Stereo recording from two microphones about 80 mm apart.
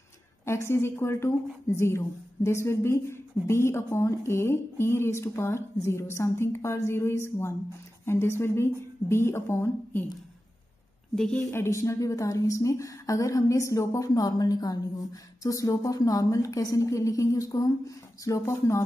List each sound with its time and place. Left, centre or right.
0.5 s a woman's voice: left
11.1 s a woman's voice: centre
11.5 s a woman's voice: left